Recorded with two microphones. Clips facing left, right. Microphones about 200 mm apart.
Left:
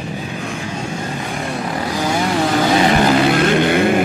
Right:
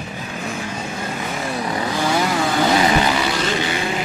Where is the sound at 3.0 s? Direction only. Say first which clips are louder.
Left 7 dB; 55° left (ahead or behind).